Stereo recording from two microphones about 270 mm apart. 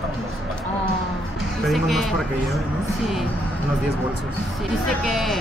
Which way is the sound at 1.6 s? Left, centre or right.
Centre.